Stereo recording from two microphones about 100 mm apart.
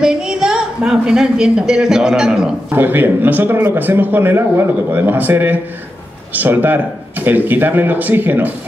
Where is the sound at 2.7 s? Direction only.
20° right (ahead or behind).